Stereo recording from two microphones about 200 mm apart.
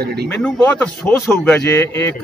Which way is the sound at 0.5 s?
10° left (ahead or behind).